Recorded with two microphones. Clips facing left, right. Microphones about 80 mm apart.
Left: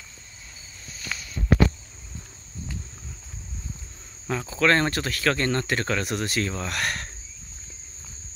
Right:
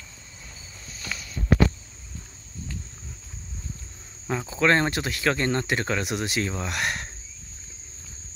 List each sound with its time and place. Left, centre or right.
4.3 s speech: centre